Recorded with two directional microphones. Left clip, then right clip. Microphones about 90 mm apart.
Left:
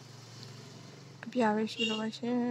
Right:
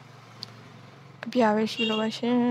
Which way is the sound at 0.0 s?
30° right (ahead or behind).